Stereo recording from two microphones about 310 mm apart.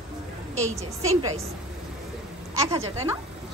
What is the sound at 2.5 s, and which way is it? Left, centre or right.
Speech, centre.